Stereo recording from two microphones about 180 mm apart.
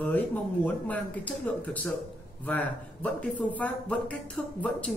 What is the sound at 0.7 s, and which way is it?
Speech, 10° left (ahead or behind).